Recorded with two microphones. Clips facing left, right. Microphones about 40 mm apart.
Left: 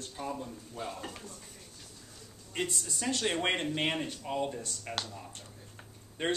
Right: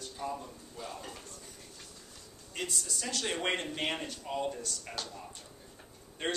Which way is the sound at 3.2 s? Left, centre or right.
Centre.